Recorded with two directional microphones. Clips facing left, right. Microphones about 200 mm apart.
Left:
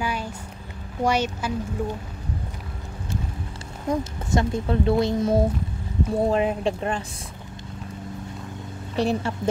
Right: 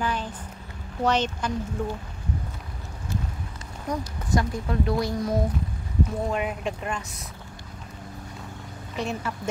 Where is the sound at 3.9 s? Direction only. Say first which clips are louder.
Left 4 dB; 25° left (ahead or behind).